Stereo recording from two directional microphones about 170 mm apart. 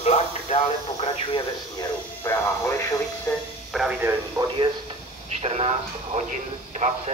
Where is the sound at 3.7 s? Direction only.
Centre (ahead or behind).